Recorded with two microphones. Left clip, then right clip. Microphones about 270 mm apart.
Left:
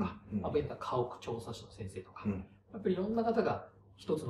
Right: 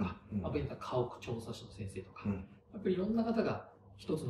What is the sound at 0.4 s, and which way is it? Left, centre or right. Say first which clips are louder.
A man's voice: left 5 dB; centre.